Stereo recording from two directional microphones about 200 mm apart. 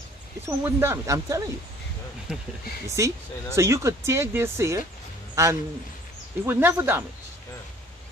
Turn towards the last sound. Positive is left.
turn(degrees=-10)  # may be behind; listen again after turning